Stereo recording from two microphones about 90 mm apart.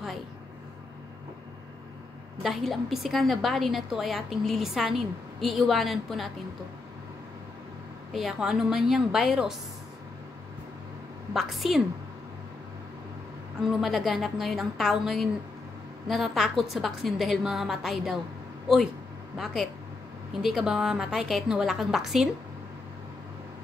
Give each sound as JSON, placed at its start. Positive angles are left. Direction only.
{"t": 2.4, "sound": "a woman's voice", "side_deg": 0}
{"t": 8.1, "sound": "a woman's voice", "side_deg": -5}
{"t": 11.3, "sound": "a woman's voice", "side_deg": 0}
{"t": 13.7, "sound": "a woman's voice", "side_deg": 0}
{"t": 19.3, "sound": "a woman's voice", "side_deg": -5}